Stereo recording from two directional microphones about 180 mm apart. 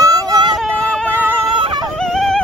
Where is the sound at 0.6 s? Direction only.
5° left (ahead or behind).